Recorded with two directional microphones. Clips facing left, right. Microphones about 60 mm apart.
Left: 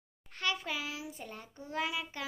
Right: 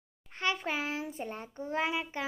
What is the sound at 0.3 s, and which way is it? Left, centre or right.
A woman's voice, right.